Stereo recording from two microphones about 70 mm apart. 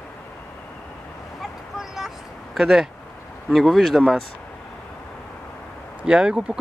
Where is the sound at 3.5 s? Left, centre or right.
Centre.